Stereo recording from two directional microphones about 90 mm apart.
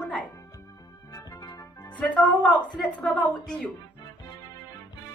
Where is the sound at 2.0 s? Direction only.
15° left (ahead or behind).